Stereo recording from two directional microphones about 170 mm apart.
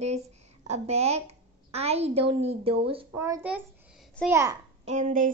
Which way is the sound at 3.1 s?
15° right (ahead or behind).